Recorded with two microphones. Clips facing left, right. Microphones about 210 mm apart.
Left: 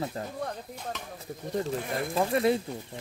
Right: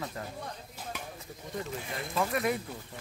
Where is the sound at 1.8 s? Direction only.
50° left (ahead or behind).